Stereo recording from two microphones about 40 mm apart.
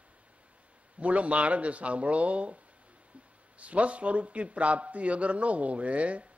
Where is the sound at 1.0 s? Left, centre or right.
Right.